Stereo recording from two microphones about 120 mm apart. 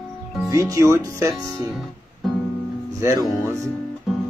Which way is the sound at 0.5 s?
25° right (ahead or behind).